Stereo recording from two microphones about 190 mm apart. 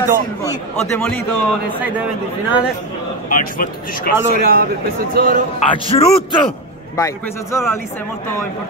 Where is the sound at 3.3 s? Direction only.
45° left (ahead or behind).